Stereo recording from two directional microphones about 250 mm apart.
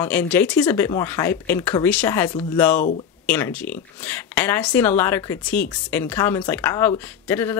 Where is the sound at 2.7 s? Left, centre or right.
Left.